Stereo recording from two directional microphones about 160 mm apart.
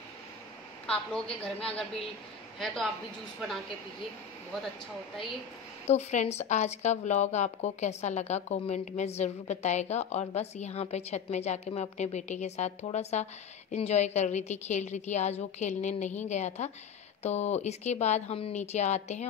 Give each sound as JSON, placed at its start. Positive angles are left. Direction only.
{"t": 1.4, "sound": "speech", "side_deg": 5}
{"t": 5.9, "sound": "speech", "side_deg": 45}